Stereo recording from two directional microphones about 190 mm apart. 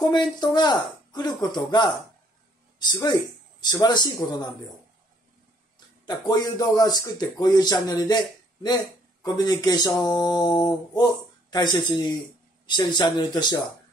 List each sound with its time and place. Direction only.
0.0 s speech: 20° left (ahead or behind)
6.0 s speech: 20° left (ahead or behind)